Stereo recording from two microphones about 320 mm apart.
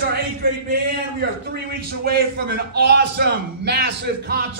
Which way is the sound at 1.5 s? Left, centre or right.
Right.